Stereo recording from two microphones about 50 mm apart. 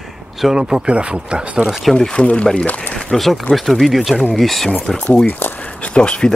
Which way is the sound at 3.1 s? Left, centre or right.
Centre.